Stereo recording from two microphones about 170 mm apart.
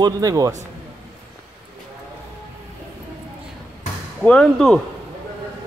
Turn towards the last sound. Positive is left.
turn(degrees=5)  # may be behind; listen again after turning